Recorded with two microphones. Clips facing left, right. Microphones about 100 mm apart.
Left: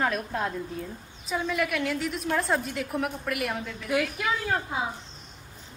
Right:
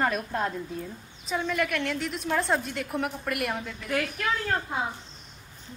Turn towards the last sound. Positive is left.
turn(degrees=5)  # may be behind; listen again after turning